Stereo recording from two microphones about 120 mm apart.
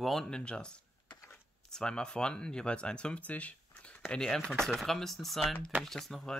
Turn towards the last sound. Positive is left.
turn(degrees=5)  # may be behind; listen again after turning